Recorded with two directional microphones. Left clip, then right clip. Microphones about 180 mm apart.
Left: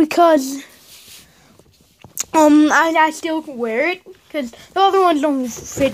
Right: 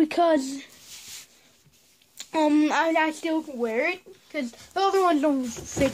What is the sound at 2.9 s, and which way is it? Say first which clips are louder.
Speech: left 8 dB; 55° left (ahead or behind).